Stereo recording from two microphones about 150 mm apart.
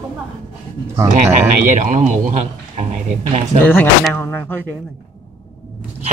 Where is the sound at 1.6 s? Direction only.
60° right (ahead or behind).